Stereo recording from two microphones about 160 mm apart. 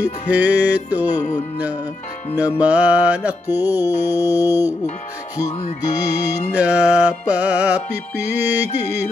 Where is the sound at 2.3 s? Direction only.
10° right (ahead or behind).